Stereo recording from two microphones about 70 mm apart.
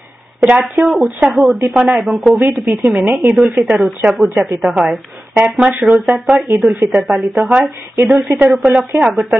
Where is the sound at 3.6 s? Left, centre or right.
Centre.